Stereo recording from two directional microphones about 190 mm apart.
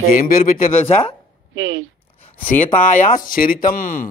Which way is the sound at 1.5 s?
90° right.